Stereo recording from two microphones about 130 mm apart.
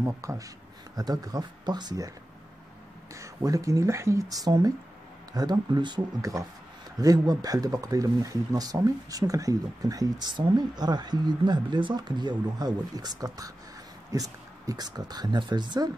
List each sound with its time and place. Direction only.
0.0 s speech: 25° right (ahead or behind)
3.2 s speech: 25° right (ahead or behind)